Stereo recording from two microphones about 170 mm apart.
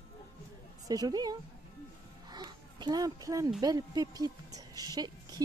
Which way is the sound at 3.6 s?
20° right (ahead or behind).